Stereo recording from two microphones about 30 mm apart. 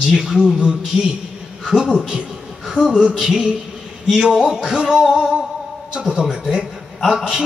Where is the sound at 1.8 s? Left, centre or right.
Right.